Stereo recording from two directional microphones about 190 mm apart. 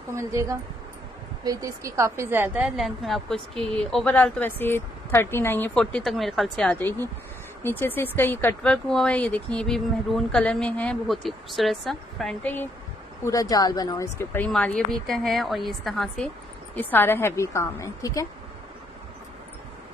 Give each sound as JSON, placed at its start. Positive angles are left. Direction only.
{"t": 0.1, "sound": "a woman's voice", "side_deg": -15}
{"t": 13.2, "sound": "a woman's voice", "side_deg": 20}